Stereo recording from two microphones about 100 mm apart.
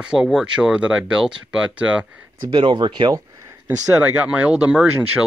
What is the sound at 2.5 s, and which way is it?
Speech, 55° right (ahead or behind).